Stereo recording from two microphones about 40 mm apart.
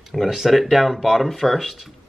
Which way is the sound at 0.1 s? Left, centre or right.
Centre.